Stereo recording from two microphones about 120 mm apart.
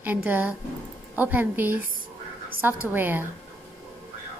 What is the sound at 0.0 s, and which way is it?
A woman's voice, 15° right (ahead or behind).